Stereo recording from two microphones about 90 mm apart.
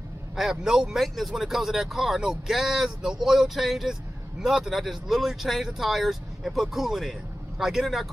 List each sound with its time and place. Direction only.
0.4 s speech: 5° right (ahead or behind)